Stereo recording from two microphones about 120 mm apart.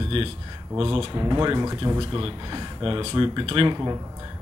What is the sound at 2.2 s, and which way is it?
Speech, 40° right (ahead or behind).